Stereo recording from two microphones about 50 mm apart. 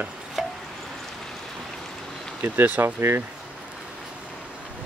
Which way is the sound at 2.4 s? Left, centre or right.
Right.